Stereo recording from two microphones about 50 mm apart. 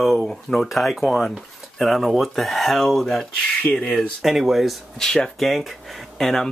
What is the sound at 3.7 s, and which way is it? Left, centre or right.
Speech, left.